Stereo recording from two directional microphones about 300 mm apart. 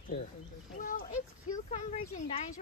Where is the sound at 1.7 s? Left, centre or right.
Left.